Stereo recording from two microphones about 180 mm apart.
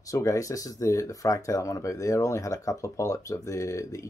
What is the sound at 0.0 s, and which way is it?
Speech, 15° left (ahead or behind).